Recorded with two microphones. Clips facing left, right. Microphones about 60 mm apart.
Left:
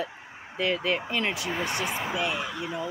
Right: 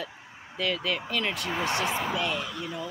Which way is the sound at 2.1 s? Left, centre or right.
Centre.